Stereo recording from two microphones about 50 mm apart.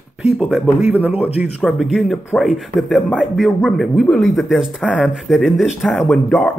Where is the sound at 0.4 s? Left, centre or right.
Centre.